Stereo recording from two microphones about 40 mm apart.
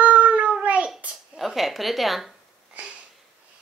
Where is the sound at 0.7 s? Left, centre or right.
Right.